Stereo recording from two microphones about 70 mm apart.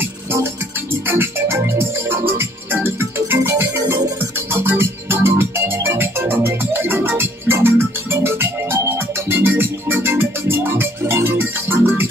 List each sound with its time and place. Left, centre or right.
1.0 s music: right